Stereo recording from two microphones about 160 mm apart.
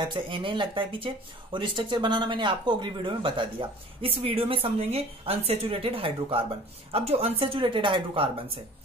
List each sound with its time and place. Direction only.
0.0 s speech: 30° right (ahead or behind)